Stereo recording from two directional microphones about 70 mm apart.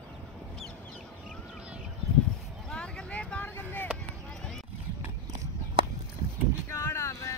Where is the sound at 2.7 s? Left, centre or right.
Centre.